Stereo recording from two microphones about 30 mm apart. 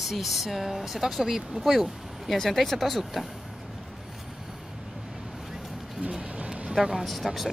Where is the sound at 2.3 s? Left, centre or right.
Centre.